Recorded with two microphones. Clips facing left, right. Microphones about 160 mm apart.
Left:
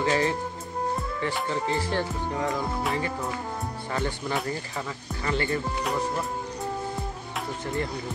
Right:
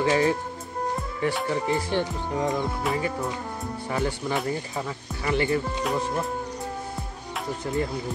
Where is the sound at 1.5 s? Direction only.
20° right (ahead or behind).